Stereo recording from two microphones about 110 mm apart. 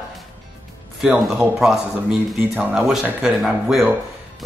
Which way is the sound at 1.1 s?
5° right (ahead or behind).